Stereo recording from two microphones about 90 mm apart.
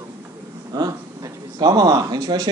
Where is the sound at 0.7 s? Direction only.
45° right (ahead or behind).